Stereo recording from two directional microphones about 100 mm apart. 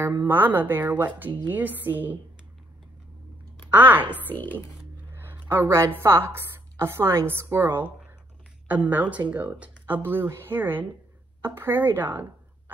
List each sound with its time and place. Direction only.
0.0 s speech: 20° right (ahead or behind)
3.7 s a woman's voice: 15° right (ahead or behind)